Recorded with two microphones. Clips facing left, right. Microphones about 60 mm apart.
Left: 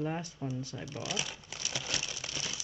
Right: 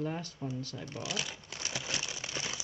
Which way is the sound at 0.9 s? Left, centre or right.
Centre.